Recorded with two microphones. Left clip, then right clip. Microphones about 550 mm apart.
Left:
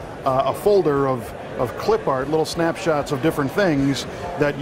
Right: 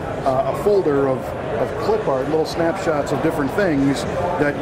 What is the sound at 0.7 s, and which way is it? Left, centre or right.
Speech, left.